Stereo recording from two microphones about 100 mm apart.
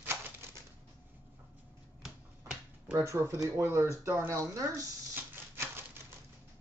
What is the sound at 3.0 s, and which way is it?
Speech, 30° right (ahead or behind).